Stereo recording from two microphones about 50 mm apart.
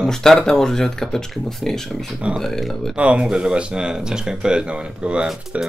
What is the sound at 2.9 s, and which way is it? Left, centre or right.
Speech, right.